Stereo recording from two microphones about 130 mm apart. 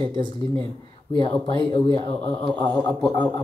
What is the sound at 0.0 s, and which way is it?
Speech, 35° right (ahead or behind).